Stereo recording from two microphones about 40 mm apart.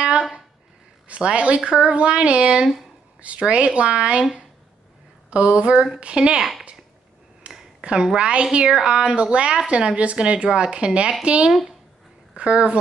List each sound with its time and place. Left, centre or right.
1.0 s speech: right
5.3 s speech: right
6.3 s speech: centre
7.5 s a sound: right
7.8 s a woman's voice: right